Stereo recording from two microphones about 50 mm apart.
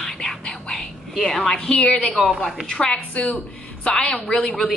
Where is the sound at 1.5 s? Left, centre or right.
Centre.